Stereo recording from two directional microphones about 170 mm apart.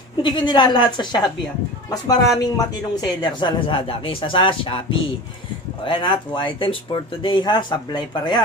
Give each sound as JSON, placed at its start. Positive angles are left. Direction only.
{"t": 0.2, "sound": "speech", "side_deg": 25}
{"t": 5.9, "sound": "speech", "side_deg": 30}